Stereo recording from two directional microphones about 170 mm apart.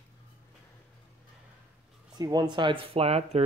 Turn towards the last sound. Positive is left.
turn(degrees=-35)  # may be behind; listen again after turning